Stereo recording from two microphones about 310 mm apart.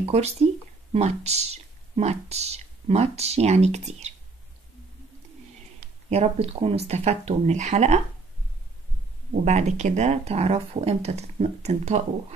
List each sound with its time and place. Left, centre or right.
0.1 s speech: centre
5.8 s speech: centre
9.3 s speech: right